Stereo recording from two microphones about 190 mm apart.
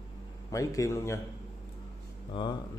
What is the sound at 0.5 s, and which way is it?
Speech, 15° left (ahead or behind).